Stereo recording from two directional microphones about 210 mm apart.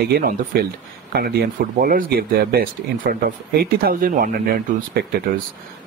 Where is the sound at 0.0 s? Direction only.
45° right (ahead or behind).